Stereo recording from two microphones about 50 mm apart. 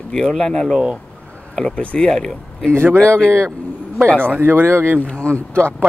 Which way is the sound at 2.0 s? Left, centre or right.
Centre.